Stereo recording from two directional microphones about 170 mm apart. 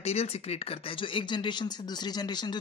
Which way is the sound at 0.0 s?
35° left (ahead or behind).